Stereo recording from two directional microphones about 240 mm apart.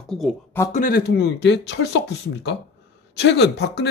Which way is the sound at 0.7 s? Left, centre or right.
Left.